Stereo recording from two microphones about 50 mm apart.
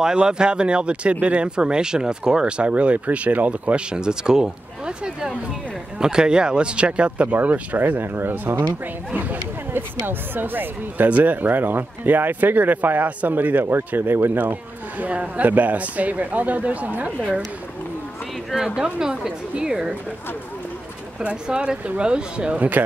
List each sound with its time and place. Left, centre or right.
0.0 s speech: centre
3.9 s speech: centre; by 8.6 s right
9.1 s speech: right
11.1 s speech: right
15.0 s speech: right
18.5 s speech: centre
21.2 s speech: right